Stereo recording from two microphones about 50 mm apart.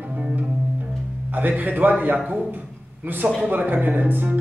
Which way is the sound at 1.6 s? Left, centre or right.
Right.